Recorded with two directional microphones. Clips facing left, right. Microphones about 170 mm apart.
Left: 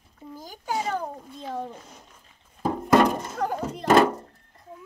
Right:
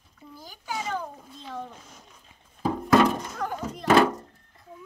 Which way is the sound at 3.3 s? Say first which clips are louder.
Left 4 dB; 35° left (ahead or behind).